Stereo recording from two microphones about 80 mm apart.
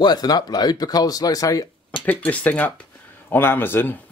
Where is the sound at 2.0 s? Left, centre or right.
Centre.